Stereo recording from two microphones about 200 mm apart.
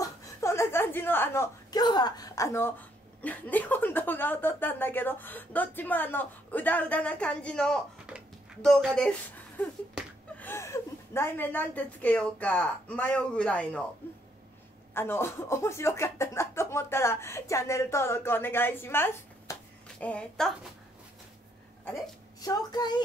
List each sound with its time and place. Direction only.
0.0 s a woman's voice: 15° left (ahead or behind)
10.3 s speech: 10° left (ahead or behind)
15.0 s a woman's voice: 10° left (ahead or behind)
22.4 s a woman's voice: 20° left (ahead or behind)